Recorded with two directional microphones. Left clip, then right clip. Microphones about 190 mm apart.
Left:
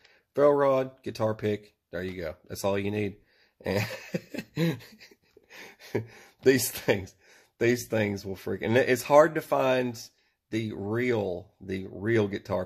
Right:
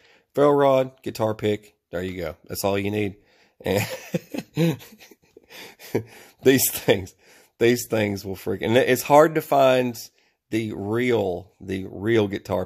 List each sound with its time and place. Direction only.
0.3 s speech: 55° right (ahead or behind)
3.6 s cough: 55° right (ahead or behind)
5.5 s speech: 50° right (ahead or behind)